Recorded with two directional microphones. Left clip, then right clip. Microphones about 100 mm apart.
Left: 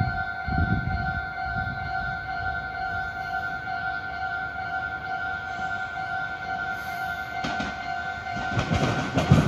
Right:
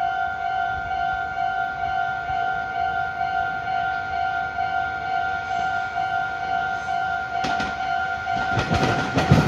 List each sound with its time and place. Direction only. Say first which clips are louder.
8.5 s train: right 5 dB; 30° right (ahead or behind)